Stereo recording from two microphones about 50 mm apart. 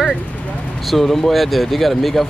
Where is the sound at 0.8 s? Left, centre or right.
Centre.